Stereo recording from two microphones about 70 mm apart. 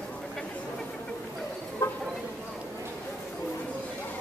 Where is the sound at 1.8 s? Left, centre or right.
Left.